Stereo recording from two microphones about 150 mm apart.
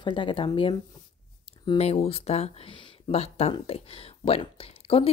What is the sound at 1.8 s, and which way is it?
Speech, 45° left (ahead or behind).